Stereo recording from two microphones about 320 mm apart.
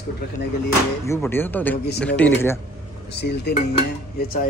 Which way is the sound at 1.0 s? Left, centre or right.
Centre.